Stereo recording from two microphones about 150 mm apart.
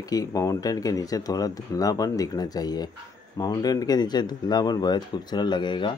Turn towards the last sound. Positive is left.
turn(degrees=30)  # may be behind; listen again after turning